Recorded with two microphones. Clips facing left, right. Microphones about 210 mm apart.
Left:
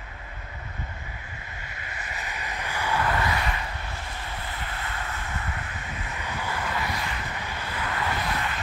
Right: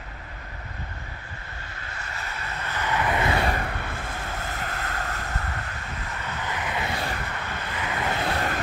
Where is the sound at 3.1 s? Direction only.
20° right (ahead or behind).